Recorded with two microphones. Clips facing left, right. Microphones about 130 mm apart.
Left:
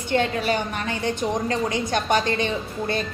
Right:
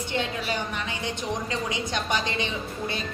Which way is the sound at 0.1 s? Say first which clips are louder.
Left 8 dB; 55° left (ahead or behind).